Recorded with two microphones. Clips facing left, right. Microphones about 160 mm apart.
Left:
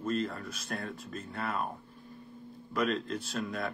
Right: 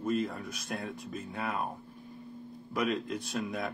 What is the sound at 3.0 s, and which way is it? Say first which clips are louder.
Speech: right 1 dB; 15° right (ahead or behind).